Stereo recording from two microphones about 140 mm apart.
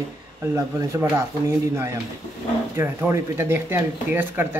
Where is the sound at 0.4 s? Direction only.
20° right (ahead or behind).